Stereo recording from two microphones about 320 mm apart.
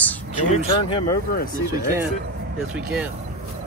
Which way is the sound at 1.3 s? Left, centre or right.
Left.